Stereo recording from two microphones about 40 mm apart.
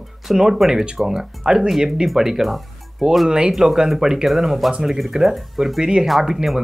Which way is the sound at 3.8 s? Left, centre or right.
Centre.